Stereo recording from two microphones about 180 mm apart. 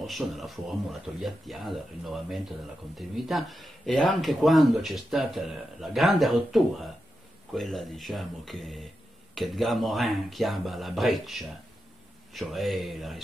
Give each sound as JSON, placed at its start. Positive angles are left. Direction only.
{"t": 0.0, "sound": "speech", "side_deg": 0}